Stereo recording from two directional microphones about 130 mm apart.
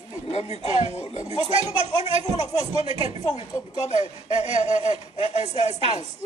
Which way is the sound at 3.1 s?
55° left (ahead or behind).